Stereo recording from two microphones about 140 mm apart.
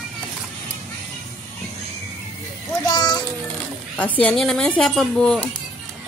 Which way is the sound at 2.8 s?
30° left (ahead or behind).